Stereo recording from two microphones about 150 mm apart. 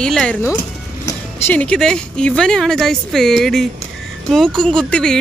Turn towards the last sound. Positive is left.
turn(degrees=5)  # may be behind; listen again after turning